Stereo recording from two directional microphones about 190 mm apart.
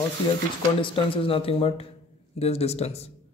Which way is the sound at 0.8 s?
25° left (ahead or behind).